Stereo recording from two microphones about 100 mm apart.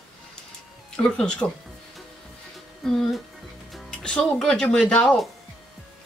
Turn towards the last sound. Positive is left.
turn(degrees=10)  # may be behind; listen again after turning